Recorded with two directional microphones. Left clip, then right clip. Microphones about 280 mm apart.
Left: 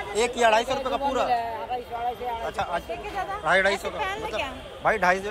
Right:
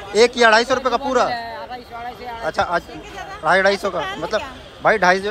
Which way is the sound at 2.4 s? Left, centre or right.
Centre.